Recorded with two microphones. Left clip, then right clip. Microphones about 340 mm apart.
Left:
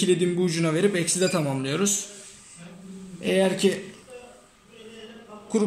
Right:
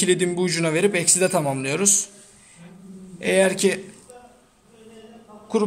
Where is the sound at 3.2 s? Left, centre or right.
Right.